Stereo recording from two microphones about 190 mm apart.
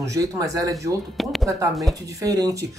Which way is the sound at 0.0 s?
15° right (ahead or behind).